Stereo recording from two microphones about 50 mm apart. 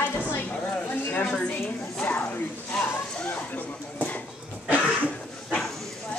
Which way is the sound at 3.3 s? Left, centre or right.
Left.